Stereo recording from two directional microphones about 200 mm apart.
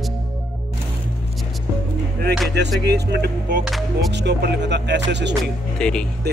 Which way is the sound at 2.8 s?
55° right (ahead or behind).